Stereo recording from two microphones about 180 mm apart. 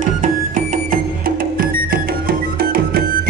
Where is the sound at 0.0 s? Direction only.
45° right (ahead or behind).